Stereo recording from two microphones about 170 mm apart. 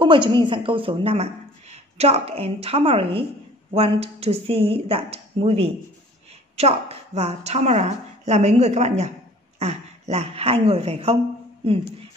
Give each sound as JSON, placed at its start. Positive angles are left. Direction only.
{"t": 0.0, "sound": "a woman's voice", "side_deg": -30}